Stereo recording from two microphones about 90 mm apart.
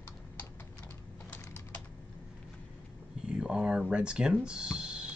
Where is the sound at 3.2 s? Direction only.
10° right (ahead or behind).